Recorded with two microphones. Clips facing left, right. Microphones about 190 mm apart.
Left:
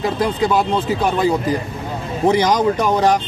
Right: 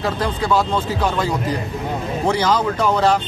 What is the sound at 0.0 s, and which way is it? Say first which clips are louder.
Speech: left 3 dB; 15° left (ahead or behind).